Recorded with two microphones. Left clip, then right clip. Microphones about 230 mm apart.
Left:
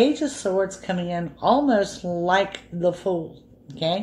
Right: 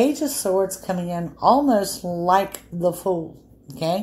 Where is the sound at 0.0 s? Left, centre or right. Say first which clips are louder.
Even; right.